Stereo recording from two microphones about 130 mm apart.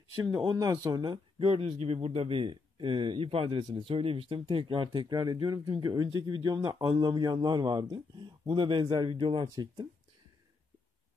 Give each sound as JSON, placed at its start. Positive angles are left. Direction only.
{"t": 0.1, "sound": "a man's voice", "side_deg": -25}
{"t": 1.4, "sound": "a man's voice", "side_deg": -50}